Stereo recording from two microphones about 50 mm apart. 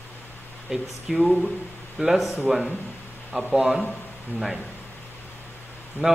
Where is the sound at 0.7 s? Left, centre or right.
Centre.